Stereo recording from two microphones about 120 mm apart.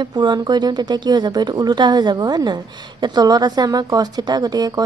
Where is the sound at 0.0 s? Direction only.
35° right (ahead or behind).